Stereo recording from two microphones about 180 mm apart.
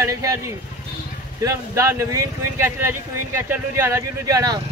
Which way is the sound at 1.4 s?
15° right (ahead or behind).